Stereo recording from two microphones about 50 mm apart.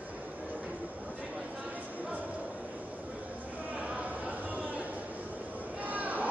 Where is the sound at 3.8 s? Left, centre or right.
Right.